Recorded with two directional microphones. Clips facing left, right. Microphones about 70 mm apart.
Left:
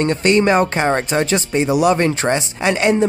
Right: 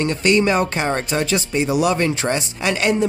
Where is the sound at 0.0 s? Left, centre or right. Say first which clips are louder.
Left 2 dB; left.